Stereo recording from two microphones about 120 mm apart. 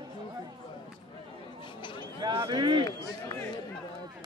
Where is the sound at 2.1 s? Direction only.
35° right (ahead or behind).